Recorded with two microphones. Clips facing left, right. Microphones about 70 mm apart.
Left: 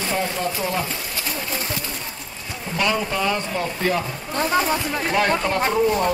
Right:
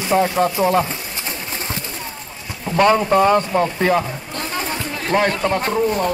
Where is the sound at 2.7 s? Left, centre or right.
Right.